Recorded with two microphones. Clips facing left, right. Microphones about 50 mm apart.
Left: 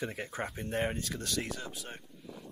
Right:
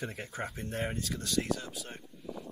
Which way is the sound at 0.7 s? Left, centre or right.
Left.